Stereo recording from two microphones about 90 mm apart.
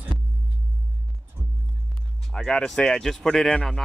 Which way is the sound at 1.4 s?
35° right (ahead or behind).